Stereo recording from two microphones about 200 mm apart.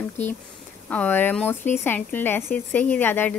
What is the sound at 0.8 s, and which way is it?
A woman's voice, 10° left (ahead or behind).